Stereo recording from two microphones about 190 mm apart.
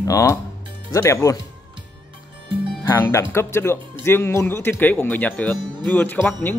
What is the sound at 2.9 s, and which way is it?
Speech, 15° left (ahead or behind).